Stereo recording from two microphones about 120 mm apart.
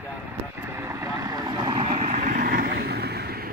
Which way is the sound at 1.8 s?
65° right (ahead or behind).